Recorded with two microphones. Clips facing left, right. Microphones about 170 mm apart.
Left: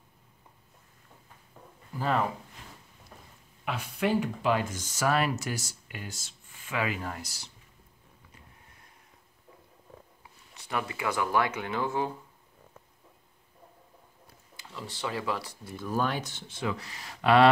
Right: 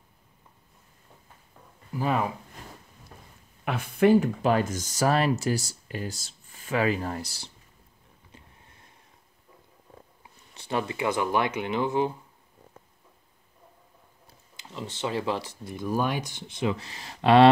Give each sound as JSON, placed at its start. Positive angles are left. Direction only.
{"t": 2.0, "sound": "speech", "side_deg": -15}
{"t": 3.6, "sound": "speech", "side_deg": -50}
{"t": 10.5, "sound": "speech", "side_deg": -30}
{"t": 14.6, "sound": "speech", "side_deg": -20}